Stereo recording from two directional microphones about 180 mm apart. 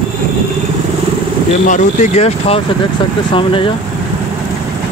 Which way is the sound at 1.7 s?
40° left (ahead or behind).